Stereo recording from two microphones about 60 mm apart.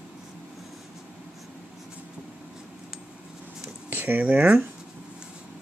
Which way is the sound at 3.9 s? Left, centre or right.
Right.